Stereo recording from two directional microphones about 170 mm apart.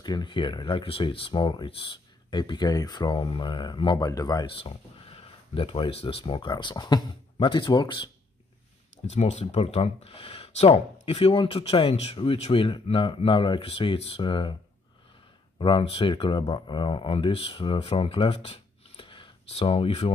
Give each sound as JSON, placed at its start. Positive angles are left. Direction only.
{"t": 0.0, "sound": "speech", "side_deg": 25}
{"t": 9.0, "sound": "speech", "side_deg": 40}
{"t": 15.6, "sound": "speech", "side_deg": 30}